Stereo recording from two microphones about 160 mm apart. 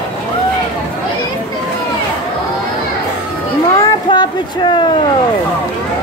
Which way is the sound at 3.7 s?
30° left (ahead or behind).